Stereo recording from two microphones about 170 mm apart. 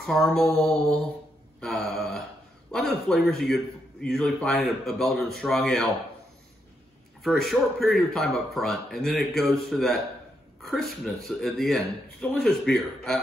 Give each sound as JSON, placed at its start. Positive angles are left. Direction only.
{"t": 0.0, "sound": "a man's voice", "side_deg": 5}
{"t": 1.6, "sound": "a sound", "side_deg": 0}
{"t": 3.3, "sound": "a man's voice", "side_deg": 0}
{"t": 7.2, "sound": "a man's voice", "side_deg": 0}